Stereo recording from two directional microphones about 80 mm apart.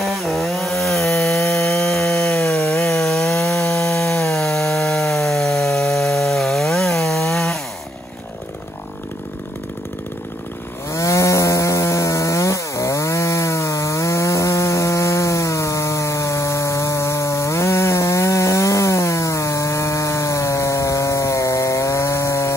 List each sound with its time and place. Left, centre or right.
0.0 s chainsaw: centre
2.9 s wood: centre
10.9 s chainsaw: left